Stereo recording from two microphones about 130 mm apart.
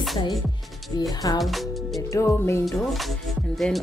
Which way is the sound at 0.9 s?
30° left (ahead or behind).